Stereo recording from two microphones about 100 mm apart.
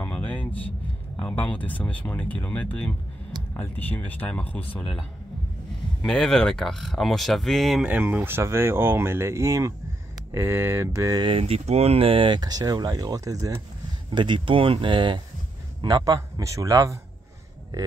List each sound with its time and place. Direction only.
0.0 s vehicle: 15° left (ahead or behind)
1.2 s speech: 15° left (ahead or behind)
6.0 s speech: 5° left (ahead or behind)
7.8 s speech: 15° right (ahead or behind)
11.1 s speech: 55° right (ahead or behind)
11.4 s speech: 90° right; by 12.4 s 60° right (ahead or behind)
12.4 s a man's voice: 40° right (ahead or behind)
14.1 s speech: 50° right (ahead or behind)
15.8 s a man's voice: 40° right (ahead or behind)